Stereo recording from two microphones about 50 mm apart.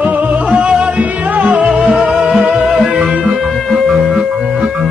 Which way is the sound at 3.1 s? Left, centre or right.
Right.